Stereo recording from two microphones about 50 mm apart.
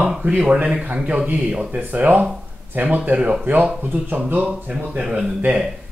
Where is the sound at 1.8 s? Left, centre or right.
Right.